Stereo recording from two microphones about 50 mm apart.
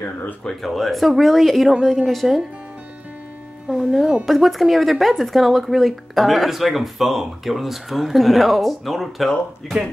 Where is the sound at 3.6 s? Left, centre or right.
Centre.